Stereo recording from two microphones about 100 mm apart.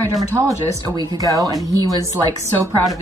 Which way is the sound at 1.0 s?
35° right (ahead or behind).